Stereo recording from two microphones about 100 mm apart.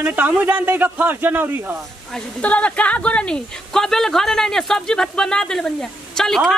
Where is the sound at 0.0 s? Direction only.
20° right (ahead or behind).